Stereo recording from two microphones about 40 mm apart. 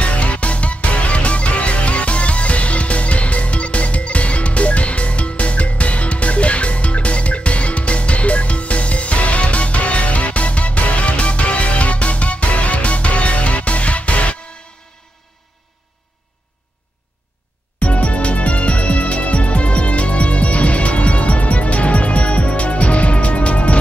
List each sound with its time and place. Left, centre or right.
0.0 s music: left
17.7 s music: left